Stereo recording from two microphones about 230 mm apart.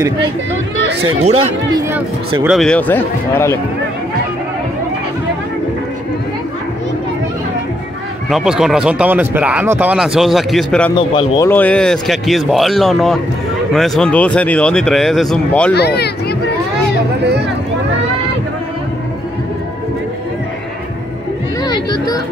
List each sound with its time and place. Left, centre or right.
1.8 s speech: centre
8.3 s speech: centre
11.0 s speech: centre
15.7 s speech: left
21.6 s music: centre